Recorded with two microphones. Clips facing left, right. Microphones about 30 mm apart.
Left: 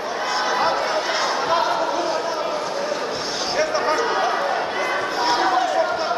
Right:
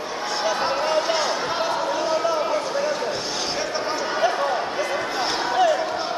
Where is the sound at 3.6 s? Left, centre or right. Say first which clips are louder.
Left 9 dB; centre.